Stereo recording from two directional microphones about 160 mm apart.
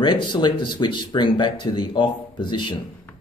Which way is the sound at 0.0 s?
30° left (ahead or behind).